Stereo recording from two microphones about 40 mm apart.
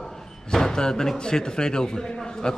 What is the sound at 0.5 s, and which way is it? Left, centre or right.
A man's voice, centre.